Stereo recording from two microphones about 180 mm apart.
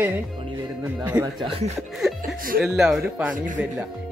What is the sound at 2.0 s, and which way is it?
Chuckle, centre (ahead or behind).